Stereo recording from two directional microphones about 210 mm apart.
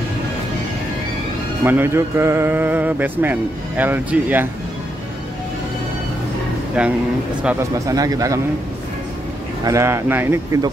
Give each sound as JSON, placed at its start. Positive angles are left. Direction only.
{"t": 1.6, "sound": "speech", "side_deg": -10}
{"t": 6.8, "sound": "speech", "side_deg": -5}
{"t": 7.4, "sound": "speech", "side_deg": -15}
{"t": 9.7, "sound": "speech", "side_deg": -15}